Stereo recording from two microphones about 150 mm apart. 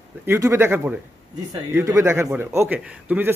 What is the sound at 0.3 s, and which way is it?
A man's voice, 15° right (ahead or behind).